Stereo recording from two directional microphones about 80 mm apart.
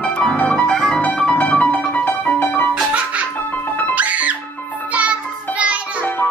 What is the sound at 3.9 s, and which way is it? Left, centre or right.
Music, centre.